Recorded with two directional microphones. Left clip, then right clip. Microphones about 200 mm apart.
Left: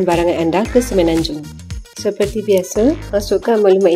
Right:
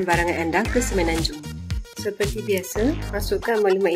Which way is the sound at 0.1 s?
Centre (ahead or behind).